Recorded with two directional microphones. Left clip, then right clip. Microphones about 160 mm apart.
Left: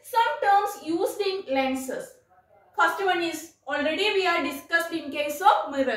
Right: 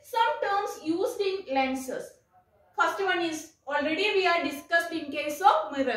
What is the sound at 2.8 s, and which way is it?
Speech, 20° right (ahead or behind).